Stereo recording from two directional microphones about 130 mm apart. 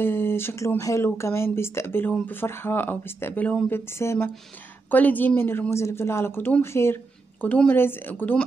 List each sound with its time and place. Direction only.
0.0 s a woman's voice: 15° left (ahead or behind)